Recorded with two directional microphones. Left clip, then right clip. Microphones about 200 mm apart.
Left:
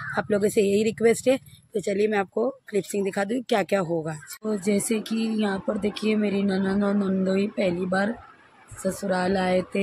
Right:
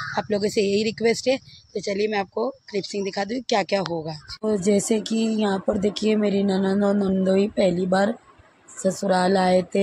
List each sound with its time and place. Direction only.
0.1 s speech: centre (ahead or behind)
4.5 s speech: 15° right (ahead or behind)